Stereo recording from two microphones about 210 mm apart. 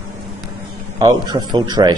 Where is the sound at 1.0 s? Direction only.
20° right (ahead or behind).